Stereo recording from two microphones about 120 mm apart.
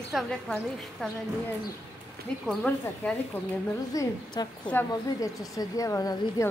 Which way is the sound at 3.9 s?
30° left (ahead or behind).